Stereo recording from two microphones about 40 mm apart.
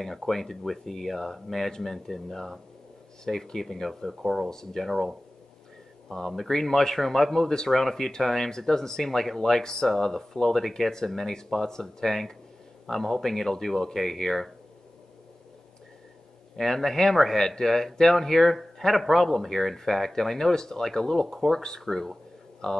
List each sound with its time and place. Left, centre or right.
0.3 s speech: centre
4.1 s speech: centre
4.5 s speech: centre
6.1 s speech: centre
16.5 s speech: centre